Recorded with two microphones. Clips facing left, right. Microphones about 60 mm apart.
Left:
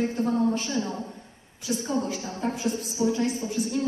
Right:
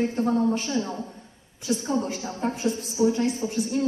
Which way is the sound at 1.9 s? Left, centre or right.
Right.